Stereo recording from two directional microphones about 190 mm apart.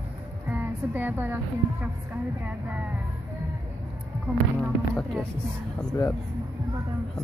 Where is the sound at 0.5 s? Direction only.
10° right (ahead or behind).